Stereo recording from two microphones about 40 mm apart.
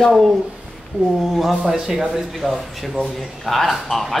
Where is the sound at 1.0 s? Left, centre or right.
Right.